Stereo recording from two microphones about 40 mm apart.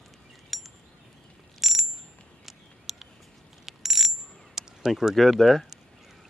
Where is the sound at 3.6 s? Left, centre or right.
Centre.